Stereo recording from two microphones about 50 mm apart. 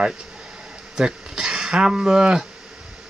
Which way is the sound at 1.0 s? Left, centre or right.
Centre.